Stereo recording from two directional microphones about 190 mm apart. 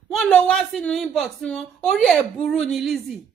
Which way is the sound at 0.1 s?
5° left (ahead or behind).